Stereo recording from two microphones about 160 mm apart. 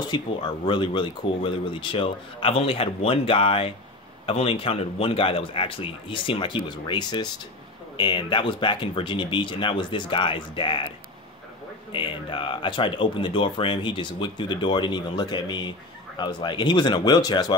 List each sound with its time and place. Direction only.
0.0 s speech: 30° left (ahead or behind)
11.9 s speech: 30° left (ahead or behind)